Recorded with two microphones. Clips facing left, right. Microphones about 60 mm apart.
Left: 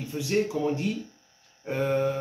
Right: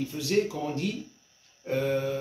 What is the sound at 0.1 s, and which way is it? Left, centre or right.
Speech, left.